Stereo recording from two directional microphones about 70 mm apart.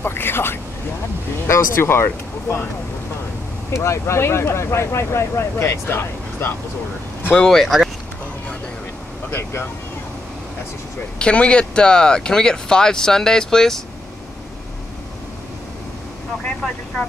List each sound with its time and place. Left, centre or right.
0.0 s speech: left
3.7 s speech: left
7.3 s speech: centre
9.3 s speech: left
11.1 s speech: centre
16.6 s speech: centre